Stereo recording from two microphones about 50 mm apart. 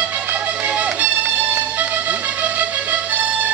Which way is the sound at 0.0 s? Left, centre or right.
Right.